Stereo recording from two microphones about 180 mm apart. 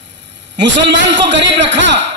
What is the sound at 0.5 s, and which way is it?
A man's voice, 80° right.